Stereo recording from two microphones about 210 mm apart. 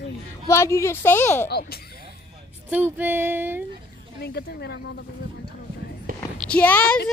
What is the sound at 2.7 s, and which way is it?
Speech, 10° right (ahead or behind).